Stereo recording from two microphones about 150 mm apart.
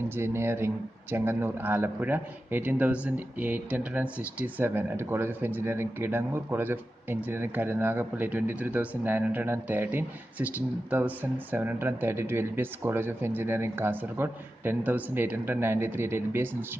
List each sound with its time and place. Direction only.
0.1 s a man's voice: 15° right (ahead or behind)